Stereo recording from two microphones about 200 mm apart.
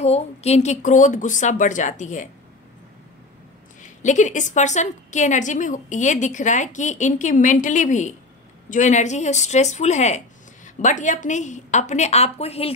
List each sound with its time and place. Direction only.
0.0 s a woman's voice: 30° left (ahead or behind)
3.8 s a woman's voice: 35° left (ahead or behind)